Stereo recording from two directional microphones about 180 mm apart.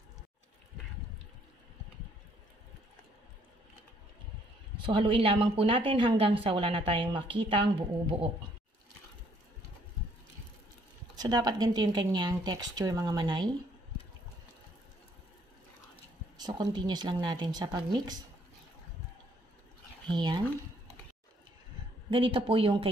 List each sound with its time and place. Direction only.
4.8 s speech: 30° right (ahead or behind)
11.1 s speech: 25° right (ahead or behind)
16.3 s speech: 25° right (ahead or behind)
20.1 s speech: 25° right (ahead or behind)
22.1 s speech: 30° right (ahead or behind)